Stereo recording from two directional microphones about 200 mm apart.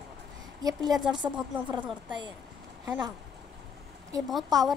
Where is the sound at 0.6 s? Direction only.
20° right (ahead or behind).